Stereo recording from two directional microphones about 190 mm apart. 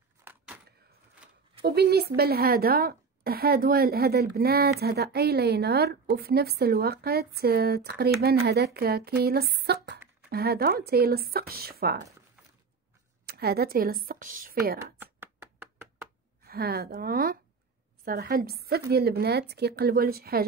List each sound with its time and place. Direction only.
0.2 s a sound: 10° right (ahead or behind)
1.6 s a woman's voice: 55° right (ahead or behind)
13.2 s speech: 55° right (ahead or behind)
15.0 s chopping: 10° right (ahead or behind)
16.4 s a woman's voice: 55° right (ahead or behind)